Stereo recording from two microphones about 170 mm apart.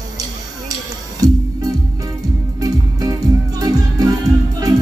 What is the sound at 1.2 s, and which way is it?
Music, 20° right (ahead or behind).